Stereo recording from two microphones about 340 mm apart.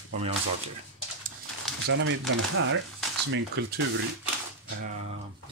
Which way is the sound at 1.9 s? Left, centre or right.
Right.